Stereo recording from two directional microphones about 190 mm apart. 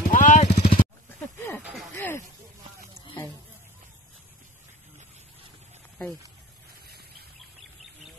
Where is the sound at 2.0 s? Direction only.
15° left (ahead or behind).